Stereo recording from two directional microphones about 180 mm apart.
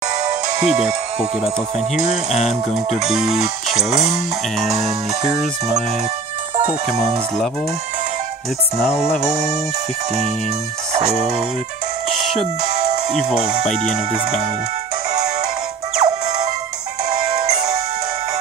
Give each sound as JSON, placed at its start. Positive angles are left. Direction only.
{"t": 0.7, "sound": "speech", "side_deg": -5}
{"t": 6.5, "sound": "speech", "side_deg": -35}
{"t": 10.9, "sound": "music", "side_deg": -35}
{"t": 16.0, "sound": "music", "side_deg": -35}